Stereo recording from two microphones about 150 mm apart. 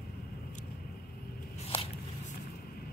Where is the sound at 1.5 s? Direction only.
40° left (ahead or behind).